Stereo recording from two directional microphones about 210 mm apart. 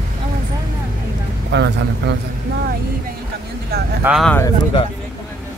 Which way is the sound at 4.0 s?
5° right (ahead or behind).